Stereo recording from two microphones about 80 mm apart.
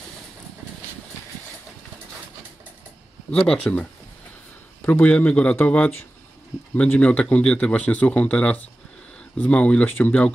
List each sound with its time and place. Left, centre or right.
3.3 s speech: centre
4.8 s speech: left